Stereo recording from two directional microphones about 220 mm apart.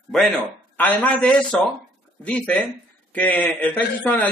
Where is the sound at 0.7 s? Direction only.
5° left (ahead or behind).